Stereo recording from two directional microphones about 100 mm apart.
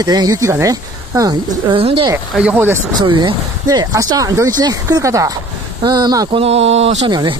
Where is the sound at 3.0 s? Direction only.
50° right (ahead or behind).